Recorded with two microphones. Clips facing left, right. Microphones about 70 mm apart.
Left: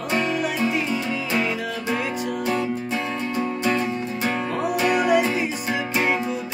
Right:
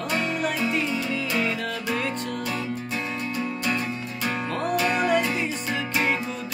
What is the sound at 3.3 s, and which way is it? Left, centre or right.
Music, left.